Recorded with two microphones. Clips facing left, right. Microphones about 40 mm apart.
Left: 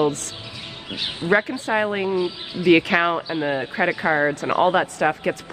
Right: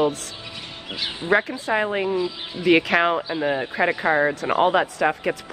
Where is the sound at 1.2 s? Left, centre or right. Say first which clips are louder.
Left 1 dB; centre.